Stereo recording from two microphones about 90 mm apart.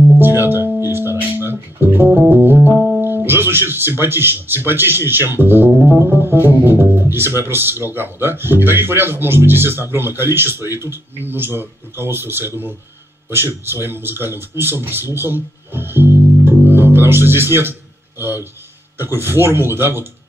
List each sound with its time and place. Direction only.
0.2 s music: 25° right (ahead or behind)
2.7 s music: 5° left (ahead or behind)
3.0 s speech: 25° right (ahead or behind)
16.6 s music: 25° right (ahead or behind)
17.6 s a sound: 25° right (ahead or behind)
19.1 s speech: 25° right (ahead or behind)